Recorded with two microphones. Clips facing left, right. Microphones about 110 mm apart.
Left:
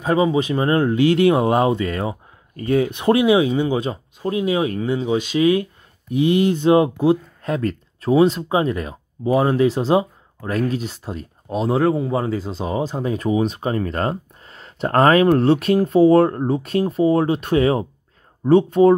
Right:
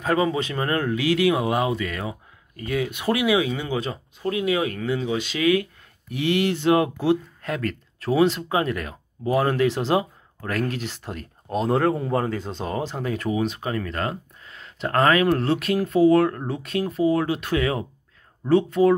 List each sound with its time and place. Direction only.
0.0 s speech: 20° left (ahead or behind)